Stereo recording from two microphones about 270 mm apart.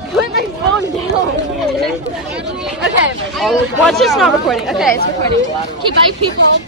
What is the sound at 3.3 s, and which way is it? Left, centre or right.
Speech, centre.